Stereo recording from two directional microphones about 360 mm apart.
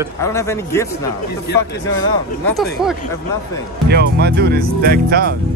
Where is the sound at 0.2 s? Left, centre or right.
Centre.